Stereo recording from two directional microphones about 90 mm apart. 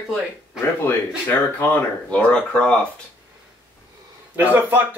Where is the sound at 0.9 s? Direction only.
20° left (ahead or behind).